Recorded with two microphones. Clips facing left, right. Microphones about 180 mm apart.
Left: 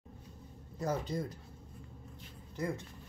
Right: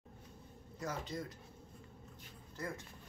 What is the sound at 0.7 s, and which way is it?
Speech, 35° left (ahead or behind).